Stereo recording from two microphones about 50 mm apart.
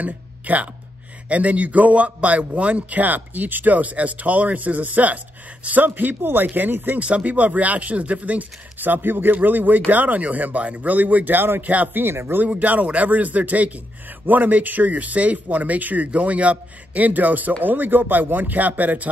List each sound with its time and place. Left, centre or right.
0.0 s speech: right
7.0 s speech: right
11.6 s speech: right
12.0 s speech: right
12.4 s speech: right